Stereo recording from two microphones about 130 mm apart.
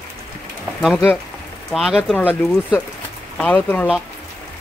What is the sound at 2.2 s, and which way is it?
Speech, 15° left (ahead or behind).